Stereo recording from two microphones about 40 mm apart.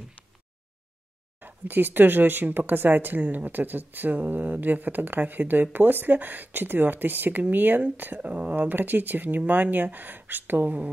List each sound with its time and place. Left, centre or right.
1.4 s speech: right
8.3 s speech: right